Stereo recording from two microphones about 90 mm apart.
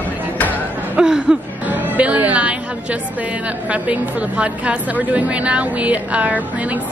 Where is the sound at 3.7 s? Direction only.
15° right (ahead or behind).